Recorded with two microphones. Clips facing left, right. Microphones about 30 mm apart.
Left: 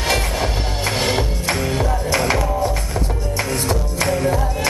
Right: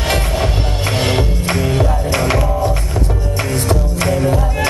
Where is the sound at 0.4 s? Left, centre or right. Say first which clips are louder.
Right 3 dB; right.